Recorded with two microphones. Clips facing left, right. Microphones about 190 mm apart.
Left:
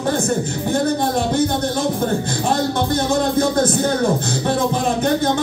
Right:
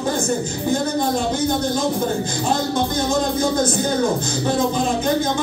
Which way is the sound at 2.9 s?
60° left (ahead or behind).